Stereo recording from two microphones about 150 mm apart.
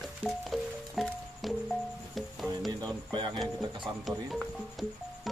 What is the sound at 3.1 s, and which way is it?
Music, 30° right (ahead or behind).